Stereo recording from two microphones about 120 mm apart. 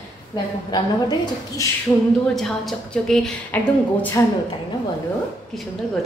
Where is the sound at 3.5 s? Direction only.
15° left (ahead or behind).